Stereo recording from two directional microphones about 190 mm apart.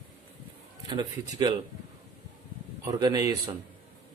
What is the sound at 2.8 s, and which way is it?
Speech, 20° right (ahead or behind).